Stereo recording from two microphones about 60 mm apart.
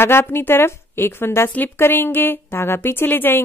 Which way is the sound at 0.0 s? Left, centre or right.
Left.